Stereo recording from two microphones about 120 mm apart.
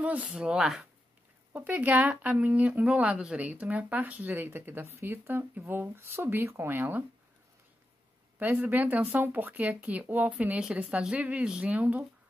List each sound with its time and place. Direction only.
0.0 s speech: 10° right (ahead or behind)
8.4 s speech: 15° right (ahead or behind)